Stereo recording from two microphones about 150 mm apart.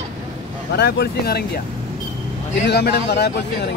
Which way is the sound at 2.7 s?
90° left.